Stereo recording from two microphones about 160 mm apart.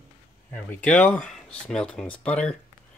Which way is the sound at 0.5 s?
10° left (ahead or behind).